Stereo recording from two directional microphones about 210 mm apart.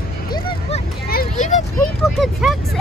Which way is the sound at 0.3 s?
25° left (ahead or behind).